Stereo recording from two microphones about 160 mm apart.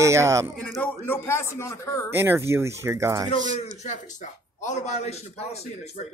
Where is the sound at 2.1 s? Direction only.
15° right (ahead or behind).